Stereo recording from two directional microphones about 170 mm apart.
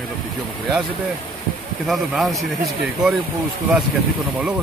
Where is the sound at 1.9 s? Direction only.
Centre (ahead or behind).